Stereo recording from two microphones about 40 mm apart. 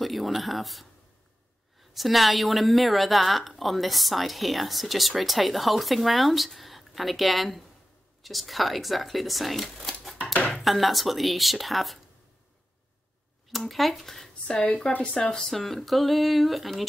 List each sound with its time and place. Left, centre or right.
0.0 s a woman's voice: centre
9.8 s a sound: centre
10.5 s a woman's voice: centre
13.5 s speech: centre
14.5 s speech: left
15.4 s a woman's voice: centre